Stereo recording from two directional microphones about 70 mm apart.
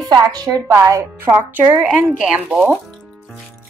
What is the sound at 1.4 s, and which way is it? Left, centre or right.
Speech, right.